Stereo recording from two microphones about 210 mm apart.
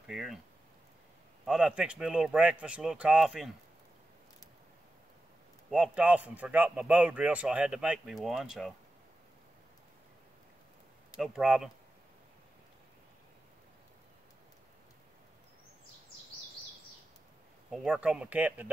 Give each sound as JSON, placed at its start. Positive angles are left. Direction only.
{"t": 0.0, "sound": "speech", "side_deg": 0}
{"t": 1.4, "sound": "a man's voice", "side_deg": 0}
{"t": 5.7, "sound": "a man's voice", "side_deg": -5}
{"t": 11.1, "sound": "a man's voice", "side_deg": -5}
{"t": 17.6, "sound": "a man's voice", "side_deg": 0}